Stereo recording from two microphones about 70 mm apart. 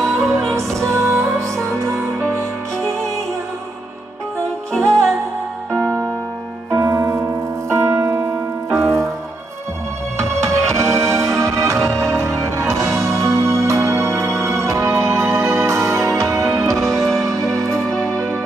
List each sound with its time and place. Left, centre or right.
0.0 s music: centre
0.6 s music: right
1.7 s music: centre
6.7 s music: right
7.7 s keyboard: right
8.7 s music: right
10.5 s music: right
16.6 s music: centre
17.2 s music: right
17.8 s music: centre